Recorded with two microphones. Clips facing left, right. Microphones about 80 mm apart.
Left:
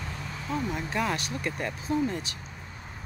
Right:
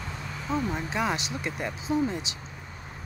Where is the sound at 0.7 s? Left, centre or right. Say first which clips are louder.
Right 1 dB; centre.